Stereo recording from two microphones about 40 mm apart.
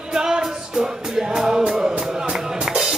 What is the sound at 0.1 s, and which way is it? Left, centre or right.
Music, centre.